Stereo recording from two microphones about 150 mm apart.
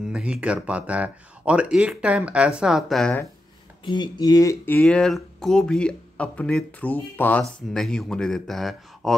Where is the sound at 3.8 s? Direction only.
30° left (ahead or behind).